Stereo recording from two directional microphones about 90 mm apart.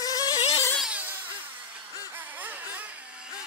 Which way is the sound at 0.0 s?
45° left (ahead or behind).